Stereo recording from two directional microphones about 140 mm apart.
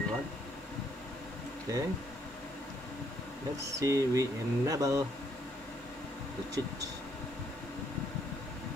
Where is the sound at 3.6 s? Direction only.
20° right (ahead or behind).